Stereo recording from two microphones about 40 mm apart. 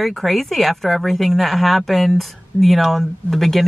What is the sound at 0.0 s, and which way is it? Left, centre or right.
Speech, centre.